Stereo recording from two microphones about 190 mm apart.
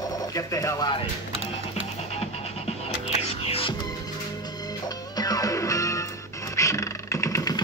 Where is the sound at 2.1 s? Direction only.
30° left (ahead or behind).